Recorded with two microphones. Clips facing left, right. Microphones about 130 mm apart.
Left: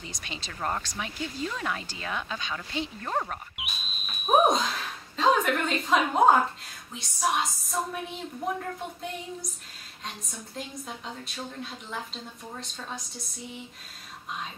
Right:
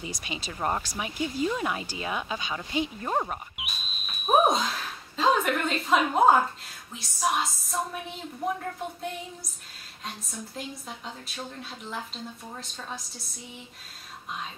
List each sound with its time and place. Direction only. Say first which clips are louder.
0.0 s speech: right 4 dB; 10° right (ahead or behind)
3.5 s a sound: even; centre (ahead or behind)
6.9 s a woman's voice: even; centre (ahead or behind)